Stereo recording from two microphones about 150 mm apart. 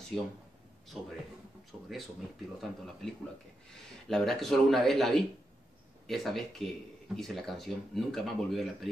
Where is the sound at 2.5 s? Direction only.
Centre (ahead or behind).